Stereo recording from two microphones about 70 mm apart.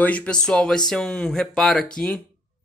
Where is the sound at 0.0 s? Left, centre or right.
Centre.